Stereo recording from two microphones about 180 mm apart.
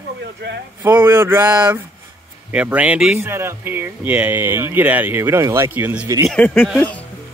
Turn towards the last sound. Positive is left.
turn(degrees=5)  # may be behind; listen again after turning